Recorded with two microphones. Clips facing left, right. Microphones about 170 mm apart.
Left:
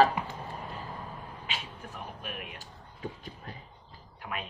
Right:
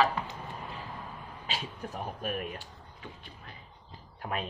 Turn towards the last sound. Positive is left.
turn(degrees=-40)  # may be behind; listen again after turning